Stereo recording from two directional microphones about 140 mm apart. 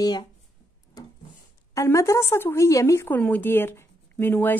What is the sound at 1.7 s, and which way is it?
A woman's voice, 20° left (ahead or behind).